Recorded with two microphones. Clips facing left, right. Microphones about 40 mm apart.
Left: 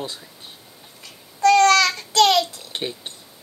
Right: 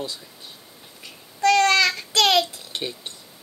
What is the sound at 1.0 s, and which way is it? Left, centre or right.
Child singing, centre.